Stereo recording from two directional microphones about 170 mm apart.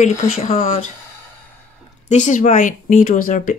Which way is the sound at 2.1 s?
45° left (ahead or behind).